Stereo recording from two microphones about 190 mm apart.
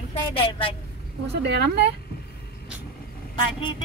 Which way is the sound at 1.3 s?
60° right (ahead or behind).